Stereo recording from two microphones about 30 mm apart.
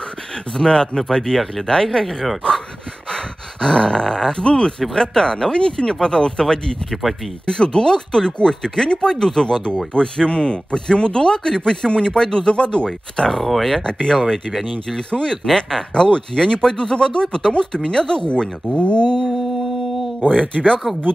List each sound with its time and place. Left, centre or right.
0.6 s speech: left
3.6 s speech: left
6.9 s speech: centre
7.4 s speech: left
9.9 s speech: left
13.3 s speech: centre
13.8 s speech: left
14.5 s speech: centre
15.0 s speech: left
15.4 s speech: centre
15.9 s speech: left
20.2 s speech: left